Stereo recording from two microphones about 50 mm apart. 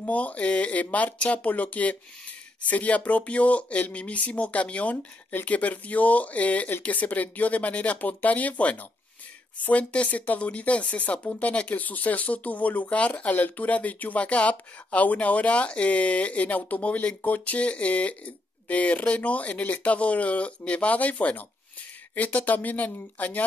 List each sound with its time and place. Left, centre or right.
0.0 s speech: left